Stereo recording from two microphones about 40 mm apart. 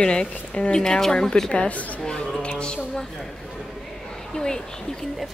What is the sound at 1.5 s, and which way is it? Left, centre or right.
Speech, left.